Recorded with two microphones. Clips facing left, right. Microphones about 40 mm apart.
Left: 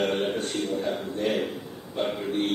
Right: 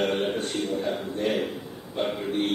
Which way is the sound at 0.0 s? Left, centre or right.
Centre.